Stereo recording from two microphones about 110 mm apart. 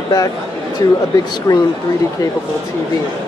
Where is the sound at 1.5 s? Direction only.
35° left (ahead or behind).